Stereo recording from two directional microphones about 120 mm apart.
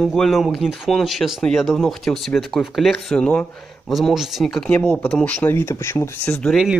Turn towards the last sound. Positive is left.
turn(degrees=0)  # may be behind; listen again after turning